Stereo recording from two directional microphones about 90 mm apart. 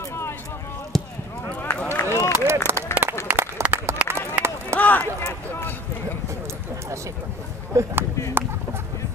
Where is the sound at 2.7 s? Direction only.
25° right (ahead or behind).